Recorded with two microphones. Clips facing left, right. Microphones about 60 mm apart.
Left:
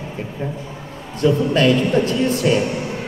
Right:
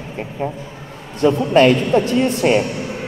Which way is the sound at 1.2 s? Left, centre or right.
Right.